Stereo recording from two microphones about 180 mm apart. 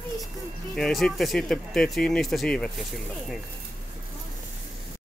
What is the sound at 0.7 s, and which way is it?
Speech, 5° left (ahead or behind).